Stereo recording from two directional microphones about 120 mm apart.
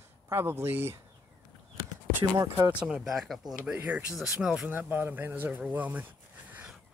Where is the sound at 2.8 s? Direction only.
5° right (ahead or behind).